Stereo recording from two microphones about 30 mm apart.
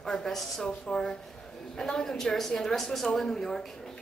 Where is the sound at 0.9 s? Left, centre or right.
Left.